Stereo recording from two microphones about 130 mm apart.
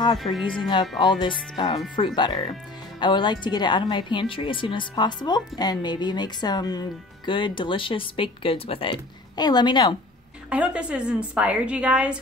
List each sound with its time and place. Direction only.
0.2 s speech: centre (ahead or behind)
0.6 s a woman's voice: 35° left (ahead or behind)
9.4 s a woman's voice: 35° left (ahead or behind)
10.5 s a woman's voice: 10° right (ahead or behind)